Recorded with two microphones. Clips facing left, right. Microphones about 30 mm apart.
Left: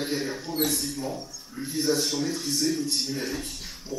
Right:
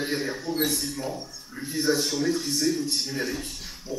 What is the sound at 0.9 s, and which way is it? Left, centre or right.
A man's voice, centre.